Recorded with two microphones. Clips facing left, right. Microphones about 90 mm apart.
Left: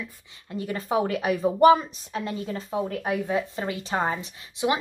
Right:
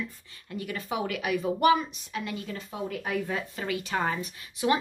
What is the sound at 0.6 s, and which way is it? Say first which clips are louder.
A woman's voice: left 6 dB; 35° left (ahead or behind).